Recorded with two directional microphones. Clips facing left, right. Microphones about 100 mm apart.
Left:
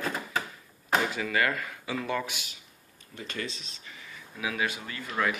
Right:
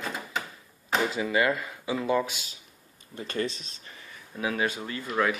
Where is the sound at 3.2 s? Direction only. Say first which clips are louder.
Right 6 dB; 50° right (ahead or behind).